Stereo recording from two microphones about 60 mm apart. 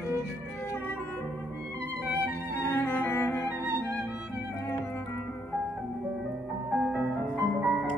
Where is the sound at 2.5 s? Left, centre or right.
Left.